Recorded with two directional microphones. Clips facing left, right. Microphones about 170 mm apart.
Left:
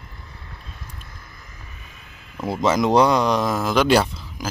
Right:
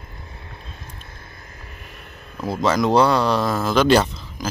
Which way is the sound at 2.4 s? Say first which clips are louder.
Even; 20° left (ahead or behind).